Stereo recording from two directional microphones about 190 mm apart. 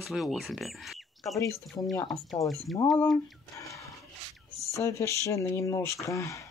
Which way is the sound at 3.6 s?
15° left (ahead or behind).